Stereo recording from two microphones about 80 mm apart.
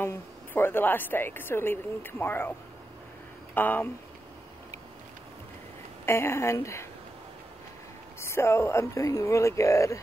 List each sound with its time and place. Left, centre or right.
0.0 s a woman's voice: left
3.5 s a woman's voice: left
6.0 s speech: left
8.2 s speech: left